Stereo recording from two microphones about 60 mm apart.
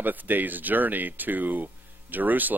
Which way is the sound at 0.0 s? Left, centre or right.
Right.